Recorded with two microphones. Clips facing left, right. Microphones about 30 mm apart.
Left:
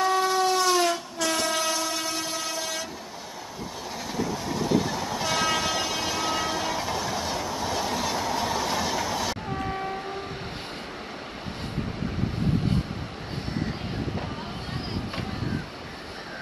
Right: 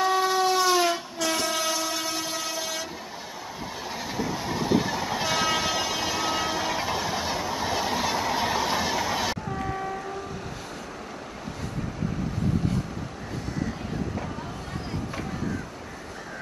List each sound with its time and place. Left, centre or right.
0.0 s train: centre
4.2 s train: centre
9.5 s vehicle: centre